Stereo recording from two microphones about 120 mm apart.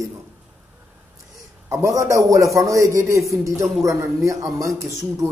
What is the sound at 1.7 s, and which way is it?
Speech, 25° right (ahead or behind).